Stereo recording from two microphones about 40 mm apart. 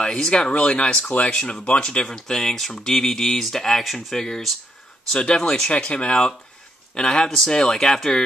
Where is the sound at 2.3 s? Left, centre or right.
Centre.